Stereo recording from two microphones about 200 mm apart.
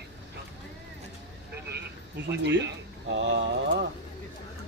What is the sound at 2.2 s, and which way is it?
Speech, 60° right (ahead or behind).